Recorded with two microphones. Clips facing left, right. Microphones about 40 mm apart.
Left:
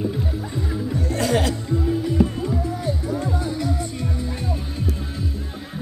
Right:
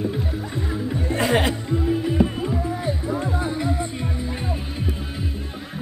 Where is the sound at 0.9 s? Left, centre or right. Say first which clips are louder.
Right 1 dB; right.